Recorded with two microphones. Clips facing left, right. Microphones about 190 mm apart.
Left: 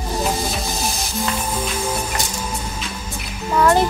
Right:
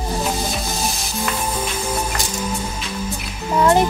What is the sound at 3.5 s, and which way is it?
Music, 20° right (ahead or behind).